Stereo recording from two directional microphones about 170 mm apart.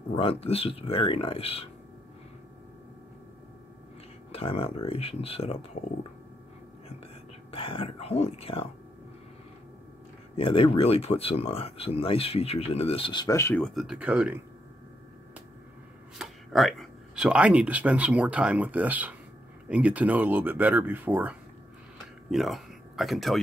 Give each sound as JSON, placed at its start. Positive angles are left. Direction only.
{"t": 0.2, "sound": "speech", "side_deg": 35}
{"t": 4.3, "sound": "speech", "side_deg": 35}
{"t": 7.5, "sound": "speech", "side_deg": 30}
{"t": 10.3, "sound": "speech", "side_deg": 30}
{"t": 13.6, "sound": "speech", "side_deg": 0}
{"t": 16.2, "sound": "speech", "side_deg": 0}